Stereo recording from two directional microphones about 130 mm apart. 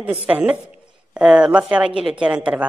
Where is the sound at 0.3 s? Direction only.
10° right (ahead or behind).